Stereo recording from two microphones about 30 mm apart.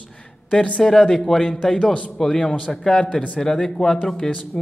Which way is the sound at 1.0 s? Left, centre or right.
Centre.